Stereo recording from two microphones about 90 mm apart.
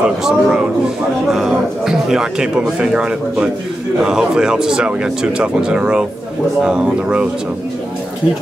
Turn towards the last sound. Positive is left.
turn(degrees=-10)  # may be behind; listen again after turning